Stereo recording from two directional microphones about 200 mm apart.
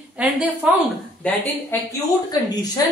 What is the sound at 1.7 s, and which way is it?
A woman's voice, 10° left (ahead or behind).